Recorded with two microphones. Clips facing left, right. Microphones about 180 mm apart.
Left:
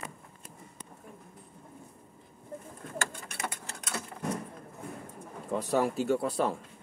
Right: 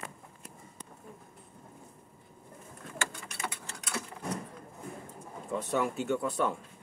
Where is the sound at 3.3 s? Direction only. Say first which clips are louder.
Left 1 dB; 50° left (ahead or behind).